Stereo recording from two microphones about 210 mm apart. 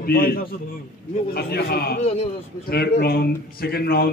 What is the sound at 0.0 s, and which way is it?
A man's voice, 45° left (ahead or behind).